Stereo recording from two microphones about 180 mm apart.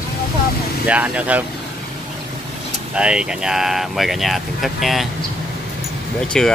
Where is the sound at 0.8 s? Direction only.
10° right (ahead or behind).